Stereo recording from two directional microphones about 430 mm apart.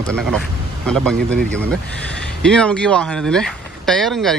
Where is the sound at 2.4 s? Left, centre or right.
Centre.